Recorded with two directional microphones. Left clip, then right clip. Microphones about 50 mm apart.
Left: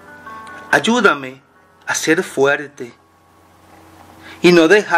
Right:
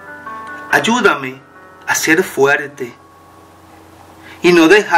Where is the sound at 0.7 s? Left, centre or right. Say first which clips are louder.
Right 1 dB; left.